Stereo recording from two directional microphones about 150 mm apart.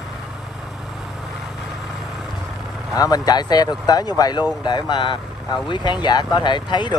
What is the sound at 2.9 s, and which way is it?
Speech, 25° left (ahead or behind).